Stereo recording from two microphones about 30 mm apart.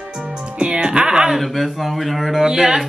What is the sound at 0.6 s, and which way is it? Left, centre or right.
Speech, right.